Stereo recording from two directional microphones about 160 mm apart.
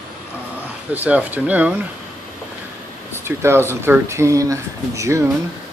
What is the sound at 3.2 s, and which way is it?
Speech, 15° right (ahead or behind).